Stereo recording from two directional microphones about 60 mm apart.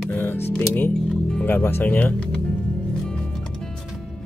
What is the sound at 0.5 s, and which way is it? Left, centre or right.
Speech, left.